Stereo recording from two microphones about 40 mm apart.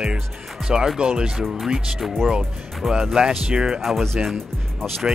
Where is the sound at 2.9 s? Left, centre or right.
Centre.